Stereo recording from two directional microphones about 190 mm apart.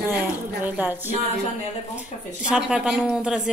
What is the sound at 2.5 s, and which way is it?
Speech, 5° right (ahead or behind).